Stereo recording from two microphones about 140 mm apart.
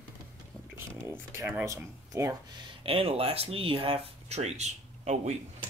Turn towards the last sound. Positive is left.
turn(degrees=-55)  # may be behind; listen again after turning